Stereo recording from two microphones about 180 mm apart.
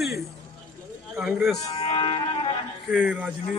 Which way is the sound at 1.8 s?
30° left (ahead or behind).